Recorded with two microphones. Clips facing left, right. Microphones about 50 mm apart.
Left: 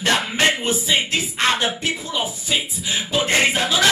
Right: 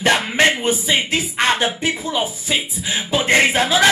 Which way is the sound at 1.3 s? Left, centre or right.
Right.